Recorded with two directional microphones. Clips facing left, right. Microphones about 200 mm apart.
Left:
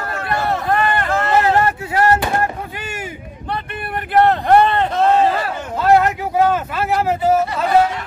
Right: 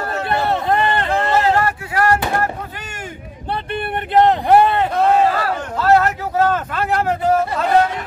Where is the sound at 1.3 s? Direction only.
25° left (ahead or behind).